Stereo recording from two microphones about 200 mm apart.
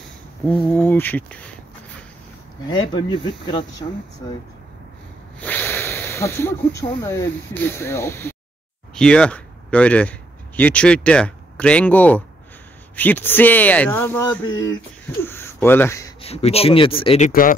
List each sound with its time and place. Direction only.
0.5 s speech: 10° left (ahead or behind)
2.6 s speech: 20° left (ahead or behind)
5.4 s speech: 10° left (ahead or behind)
16.2 s speech: 30° left (ahead or behind)
17.3 s speech: 45° left (ahead or behind)